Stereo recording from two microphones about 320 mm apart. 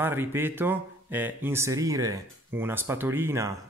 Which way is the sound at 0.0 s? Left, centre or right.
Centre.